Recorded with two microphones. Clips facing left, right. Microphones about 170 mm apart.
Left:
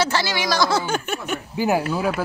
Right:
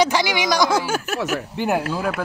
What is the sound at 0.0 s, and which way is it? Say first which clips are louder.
Speech: right 3 dB; 15° right (ahead or behind).